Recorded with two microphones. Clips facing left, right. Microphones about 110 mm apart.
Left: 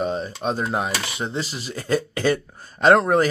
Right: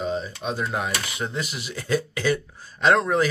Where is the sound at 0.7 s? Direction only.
25° left (ahead or behind).